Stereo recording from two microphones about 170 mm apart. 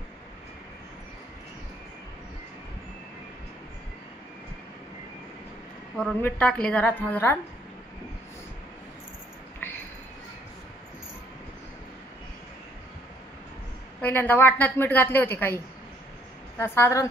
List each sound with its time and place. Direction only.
5.9 s a woman's voice: 5° left (ahead or behind)
14.0 s a woman's voice: 10° left (ahead or behind)